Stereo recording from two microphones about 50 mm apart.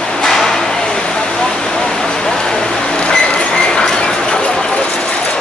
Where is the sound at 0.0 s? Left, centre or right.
Centre.